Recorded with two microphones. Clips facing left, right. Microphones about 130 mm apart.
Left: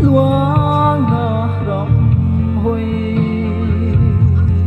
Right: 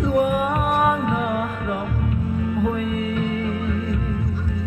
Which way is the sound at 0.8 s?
40° left (ahead or behind).